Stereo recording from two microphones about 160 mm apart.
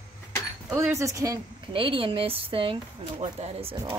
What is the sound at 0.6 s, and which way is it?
A woman's voice, 15° right (ahead or behind).